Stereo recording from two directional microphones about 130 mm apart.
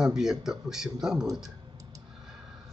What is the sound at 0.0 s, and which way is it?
Speech, 5° right (ahead or behind).